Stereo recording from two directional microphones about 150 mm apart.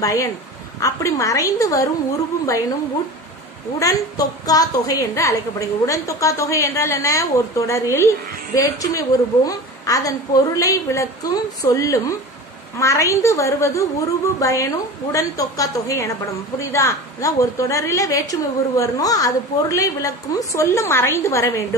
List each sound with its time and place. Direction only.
0.0 s a woman's voice: 20° left (ahead or behind)
4.5 s a woman's voice: 25° left (ahead or behind)